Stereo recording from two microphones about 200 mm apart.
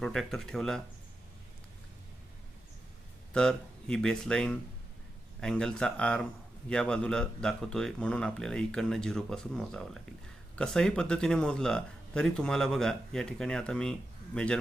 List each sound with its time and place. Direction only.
0.0 s speech: centre (ahead or behind)
3.3 s speech: 5° left (ahead or behind)